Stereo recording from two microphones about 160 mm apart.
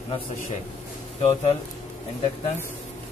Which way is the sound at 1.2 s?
35° left (ahead or behind).